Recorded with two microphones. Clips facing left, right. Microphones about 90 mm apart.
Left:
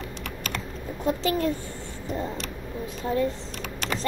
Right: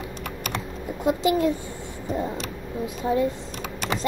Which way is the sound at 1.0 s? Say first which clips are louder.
Right 4 dB; 15° right (ahead or behind).